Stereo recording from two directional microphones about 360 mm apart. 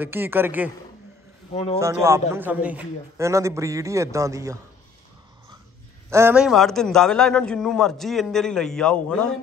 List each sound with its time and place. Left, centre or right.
0.0 s a man's voice: centre
1.5 s speech: centre
1.8 s a man's voice: centre
6.0 s a man's voice: centre